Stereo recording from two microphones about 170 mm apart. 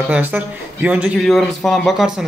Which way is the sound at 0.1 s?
10° right (ahead or behind).